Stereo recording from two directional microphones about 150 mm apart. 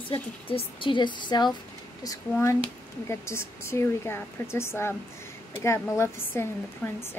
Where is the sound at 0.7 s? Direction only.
35° left (ahead or behind).